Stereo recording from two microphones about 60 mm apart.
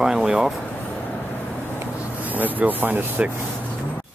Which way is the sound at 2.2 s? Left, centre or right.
Right.